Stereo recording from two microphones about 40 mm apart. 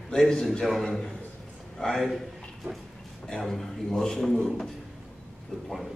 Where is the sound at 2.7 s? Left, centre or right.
Right.